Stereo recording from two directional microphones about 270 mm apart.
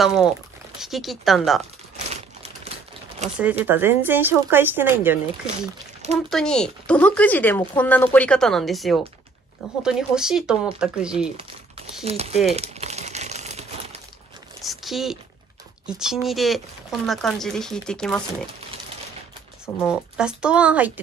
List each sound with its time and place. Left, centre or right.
0.0 s speech: centre
3.3 s speech: centre
12.0 s speech: right
12.5 s crumpling: right
14.6 s a sound: centre
15.9 s speech: centre
19.9 s speech: centre